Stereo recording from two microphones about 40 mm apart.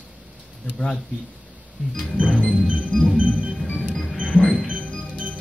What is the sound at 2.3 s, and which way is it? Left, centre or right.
Music, left.